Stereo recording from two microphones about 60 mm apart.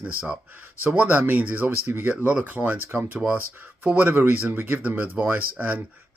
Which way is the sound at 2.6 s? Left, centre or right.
Centre.